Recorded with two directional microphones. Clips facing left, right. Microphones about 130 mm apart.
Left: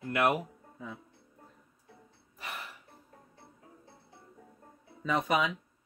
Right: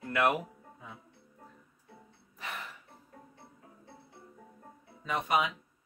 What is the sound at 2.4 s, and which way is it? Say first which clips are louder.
Music: right 1 dB; 10° left (ahead or behind).